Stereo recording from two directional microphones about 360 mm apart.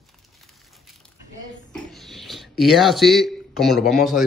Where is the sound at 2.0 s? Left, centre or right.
Centre.